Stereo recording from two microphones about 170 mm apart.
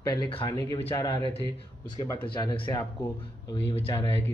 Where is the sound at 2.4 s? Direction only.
30° left (ahead or behind).